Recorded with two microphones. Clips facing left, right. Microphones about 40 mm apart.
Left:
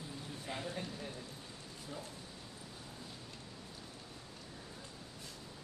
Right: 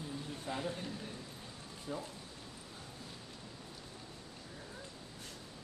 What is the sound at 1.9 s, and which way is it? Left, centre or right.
Speech, centre.